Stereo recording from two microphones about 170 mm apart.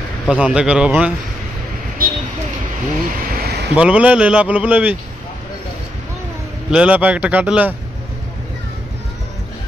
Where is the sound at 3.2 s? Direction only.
60° right (ahead or behind).